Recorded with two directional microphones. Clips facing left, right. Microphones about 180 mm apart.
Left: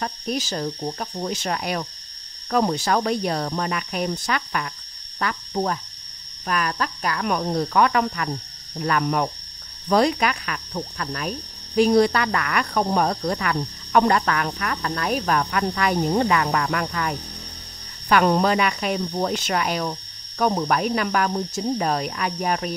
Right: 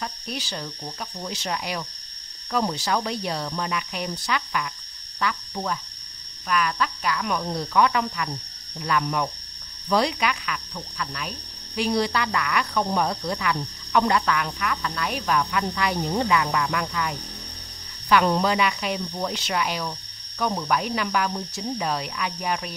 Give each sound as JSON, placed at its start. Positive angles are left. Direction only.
{"t": 0.0, "sound": "speech", "side_deg": 45}
{"t": 18.1, "sound": "speech", "side_deg": 50}